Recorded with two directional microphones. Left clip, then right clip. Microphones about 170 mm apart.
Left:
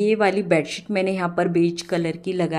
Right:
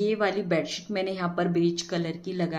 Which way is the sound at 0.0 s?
40° left (ahead or behind).